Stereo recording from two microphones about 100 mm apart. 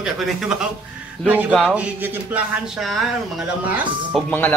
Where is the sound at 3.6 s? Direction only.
15° right (ahead or behind).